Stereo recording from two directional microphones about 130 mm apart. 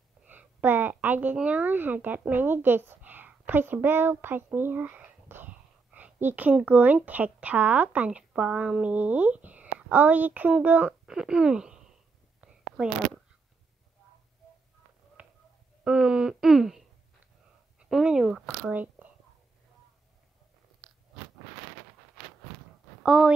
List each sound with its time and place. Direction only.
0.3 s a woman's voice: 15° right (ahead or behind)
12.4 s whispering: 5° right (ahead or behind)
15.2 s a sound: 10° right (ahead or behind)
15.8 s speech: 10° right (ahead or behind)
23.0 s speech: 5° right (ahead or behind)